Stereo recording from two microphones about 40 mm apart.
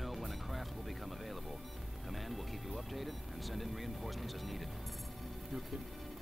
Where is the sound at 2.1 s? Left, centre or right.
Centre.